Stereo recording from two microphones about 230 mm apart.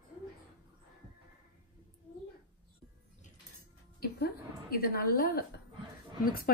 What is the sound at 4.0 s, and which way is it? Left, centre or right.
A woman's voice, left.